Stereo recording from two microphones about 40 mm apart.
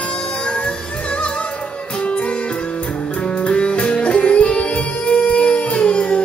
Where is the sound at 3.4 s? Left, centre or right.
Left.